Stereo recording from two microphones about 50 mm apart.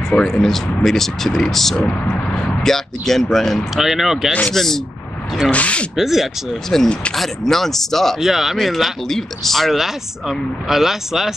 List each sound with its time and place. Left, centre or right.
0.1 s speech: centre
4.5 s speech: centre
5.5 s speech: left
5.9 s speech: centre
6.7 s speech: centre
8.2 s speech: centre